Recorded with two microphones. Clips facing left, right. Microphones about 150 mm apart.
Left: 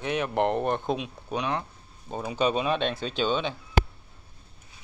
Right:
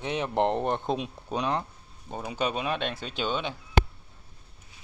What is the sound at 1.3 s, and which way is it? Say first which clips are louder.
Speech: right 1 dB; 35° right (ahead or behind).